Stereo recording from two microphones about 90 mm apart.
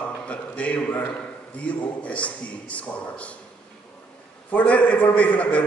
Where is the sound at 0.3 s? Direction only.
15° left (ahead or behind).